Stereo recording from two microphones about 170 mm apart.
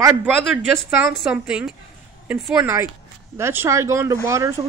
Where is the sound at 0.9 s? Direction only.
5° right (ahead or behind).